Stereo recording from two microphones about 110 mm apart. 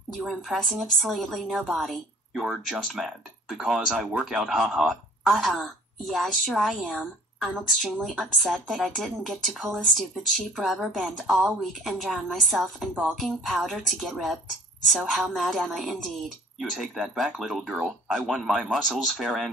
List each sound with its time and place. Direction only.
0.2 s a woman's voice: 5° right (ahead or behind)